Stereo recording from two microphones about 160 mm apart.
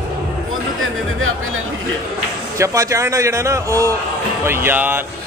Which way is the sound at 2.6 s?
20° right (ahead or behind).